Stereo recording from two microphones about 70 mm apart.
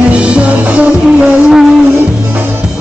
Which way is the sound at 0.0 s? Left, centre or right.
Centre.